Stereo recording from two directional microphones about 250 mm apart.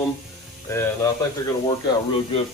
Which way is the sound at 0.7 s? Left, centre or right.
Centre.